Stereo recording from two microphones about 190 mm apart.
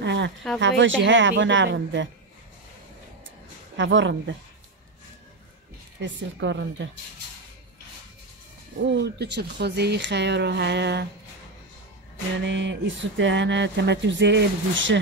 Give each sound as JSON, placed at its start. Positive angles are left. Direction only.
{"t": 0.0, "sound": "a sound", "side_deg": -70}
{"t": 0.6, "sound": "speech", "side_deg": -75}
{"t": 3.7, "sound": "speech", "side_deg": -75}
{"t": 5.9, "sound": "speech", "side_deg": -70}
{"t": 8.9, "sound": "speech", "side_deg": -65}
{"t": 12.4, "sound": "speech", "side_deg": -70}